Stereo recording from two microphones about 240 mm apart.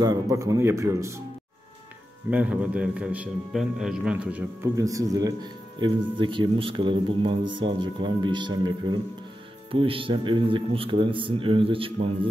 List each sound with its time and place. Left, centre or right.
0.0 s a man's voice: centre
2.3 s a man's voice: centre; by 12.1 s right